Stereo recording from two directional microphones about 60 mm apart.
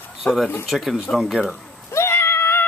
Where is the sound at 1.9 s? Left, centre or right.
Left.